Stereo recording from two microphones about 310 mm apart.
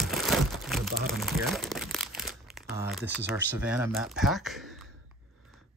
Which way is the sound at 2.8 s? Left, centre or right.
Centre.